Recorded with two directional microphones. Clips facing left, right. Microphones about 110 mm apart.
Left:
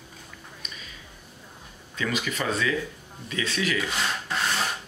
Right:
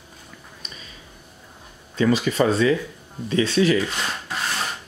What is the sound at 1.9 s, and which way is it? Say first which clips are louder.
Speech: right 9 dB; 35° right (ahead or behind).